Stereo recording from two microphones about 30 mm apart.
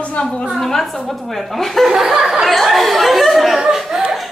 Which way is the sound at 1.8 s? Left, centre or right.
Centre.